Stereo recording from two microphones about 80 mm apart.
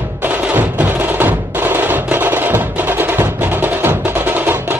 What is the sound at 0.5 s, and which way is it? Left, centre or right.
Music, right.